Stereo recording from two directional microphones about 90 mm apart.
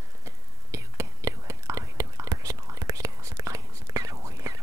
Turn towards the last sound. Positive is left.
turn(degrees=-35)  # may be behind; listen again after turning